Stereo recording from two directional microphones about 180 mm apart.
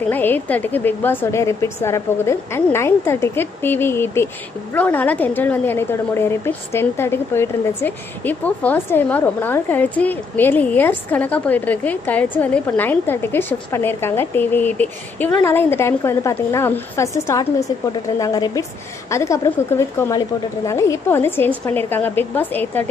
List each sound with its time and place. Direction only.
0.1 s a woman's voice: 10° left (ahead or behind)